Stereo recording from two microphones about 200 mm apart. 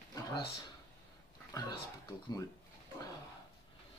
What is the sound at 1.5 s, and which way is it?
Speech, 20° left (ahead or behind).